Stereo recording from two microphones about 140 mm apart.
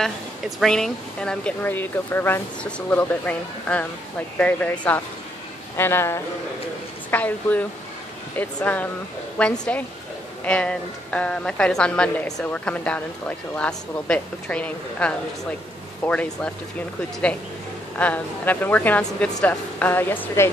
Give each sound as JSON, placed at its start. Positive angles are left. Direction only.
{"t": 0.6, "sound": "a woman's voice", "side_deg": 5}
{"t": 17.9, "sound": "a woman's voice", "side_deg": 10}